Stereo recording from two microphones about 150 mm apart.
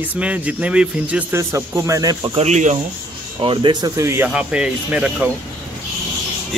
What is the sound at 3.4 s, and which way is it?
Speech, 35° right (ahead or behind).